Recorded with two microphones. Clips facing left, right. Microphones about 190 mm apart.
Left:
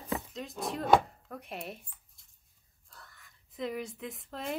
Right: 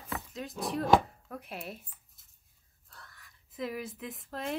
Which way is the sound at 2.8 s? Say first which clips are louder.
Right 1 dB; centre (ahead or behind).